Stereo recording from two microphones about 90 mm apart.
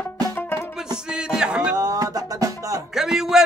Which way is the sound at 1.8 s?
45° right (ahead or behind).